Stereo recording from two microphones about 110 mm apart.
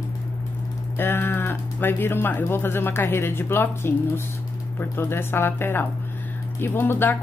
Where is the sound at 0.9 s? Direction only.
20° left (ahead or behind).